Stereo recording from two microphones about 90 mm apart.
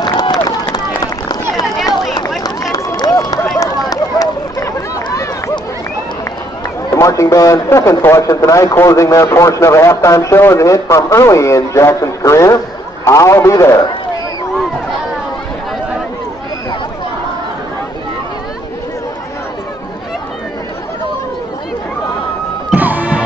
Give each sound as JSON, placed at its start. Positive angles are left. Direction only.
{"t": 0.0, "sound": "run", "side_deg": 50}
{"t": 2.4, "sound": "run", "side_deg": 40}
{"t": 3.5, "sound": "a sound", "side_deg": 40}
{"t": 6.9, "sound": "speech", "side_deg": 35}
{"t": 22.8, "sound": "music", "side_deg": -20}